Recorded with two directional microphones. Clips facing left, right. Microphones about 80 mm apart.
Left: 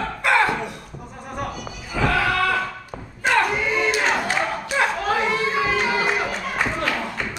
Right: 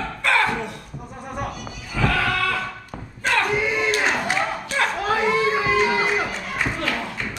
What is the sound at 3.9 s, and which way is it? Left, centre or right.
Crowd, centre.